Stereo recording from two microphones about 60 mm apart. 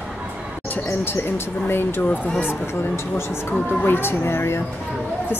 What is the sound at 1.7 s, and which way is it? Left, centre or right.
Speech, left.